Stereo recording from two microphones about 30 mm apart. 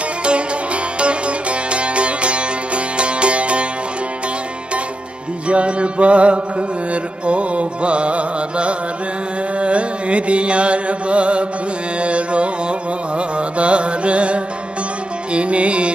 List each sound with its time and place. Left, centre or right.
0.9 s music: right
5.5 s music: right
13.4 s carnatic music: right
15.3 s music: right